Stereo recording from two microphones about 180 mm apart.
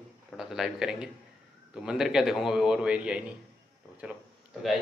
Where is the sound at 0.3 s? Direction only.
Centre (ahead or behind).